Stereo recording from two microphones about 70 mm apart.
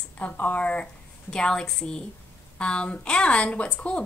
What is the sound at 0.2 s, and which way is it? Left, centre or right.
A woman's voice, left.